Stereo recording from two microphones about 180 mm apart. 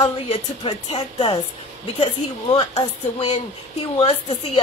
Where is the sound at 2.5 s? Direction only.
25° left (ahead or behind).